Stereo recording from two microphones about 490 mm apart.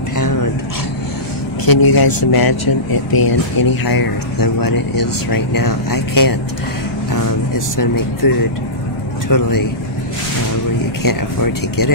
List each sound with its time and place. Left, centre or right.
1.7 s speech: left
9.3 s speech: left
11.0 s speech: left